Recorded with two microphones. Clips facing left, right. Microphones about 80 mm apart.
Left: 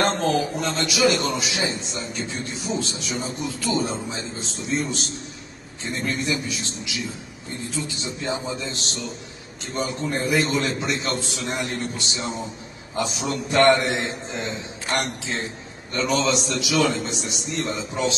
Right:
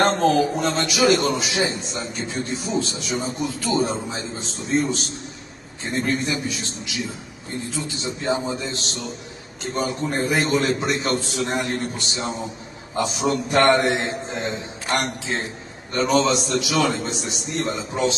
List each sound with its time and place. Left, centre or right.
0.0 s a man's voice: right